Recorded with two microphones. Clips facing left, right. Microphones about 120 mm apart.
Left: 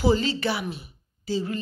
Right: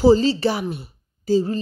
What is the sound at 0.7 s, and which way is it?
Speech, 50° right (ahead or behind).